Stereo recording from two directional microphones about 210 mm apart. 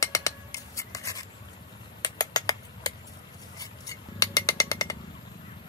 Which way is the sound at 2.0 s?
20° left (ahead or behind).